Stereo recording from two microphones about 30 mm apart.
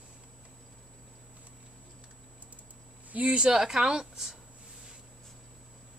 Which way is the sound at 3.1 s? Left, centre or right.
Right.